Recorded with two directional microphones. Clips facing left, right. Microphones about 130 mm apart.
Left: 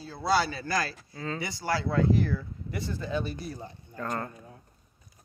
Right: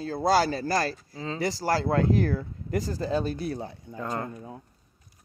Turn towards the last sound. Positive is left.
turn(degrees=-15)  # may be behind; listen again after turning